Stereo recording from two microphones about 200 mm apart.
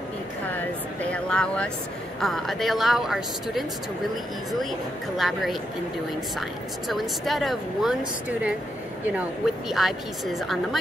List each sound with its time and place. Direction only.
1.0 s a woman's voice: 5° left (ahead or behind)
5.1 s a woman's voice: centre (ahead or behind)
6.9 s a woman's voice: centre (ahead or behind)
9.7 s a woman's voice: centre (ahead or behind)